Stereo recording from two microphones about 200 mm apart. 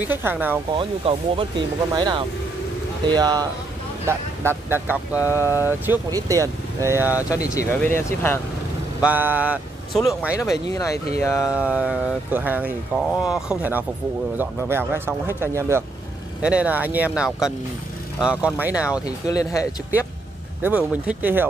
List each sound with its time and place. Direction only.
0.0 s speech: 10° right (ahead or behind)
0.7 s speech: 25° right (ahead or behind); by 7.2 s 10° right (ahead or behind)
7.2 s speech: 15° left (ahead or behind)
9.0 s speech: 10° right (ahead or behind)
10.4 s speech: 15° left (ahead or behind)
11.5 s speech: 5° right (ahead or behind)
19.0 s speech: 15° left (ahead or behind)
20.6 s speech: 5° right (ahead or behind)